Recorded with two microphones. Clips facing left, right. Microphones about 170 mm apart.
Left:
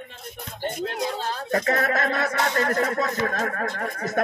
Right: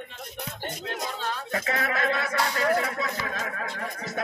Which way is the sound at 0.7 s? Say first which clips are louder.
Left 7 dB; 40° left (ahead or behind).